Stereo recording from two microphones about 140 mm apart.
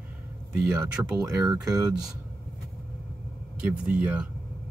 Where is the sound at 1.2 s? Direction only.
25° right (ahead or behind).